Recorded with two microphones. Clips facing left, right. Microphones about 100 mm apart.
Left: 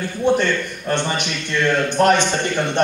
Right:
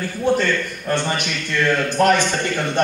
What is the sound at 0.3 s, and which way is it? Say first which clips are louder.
A man's voice: left 1 dB; 20° left (ahead or behind).